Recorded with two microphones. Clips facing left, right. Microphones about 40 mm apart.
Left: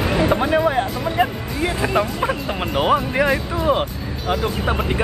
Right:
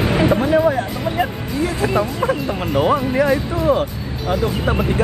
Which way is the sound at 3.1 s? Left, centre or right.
Left.